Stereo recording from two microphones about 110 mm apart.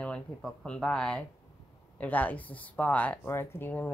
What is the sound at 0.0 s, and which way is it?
Speech, 5° left (ahead or behind).